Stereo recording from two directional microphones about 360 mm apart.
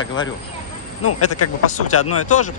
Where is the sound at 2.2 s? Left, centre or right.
Centre.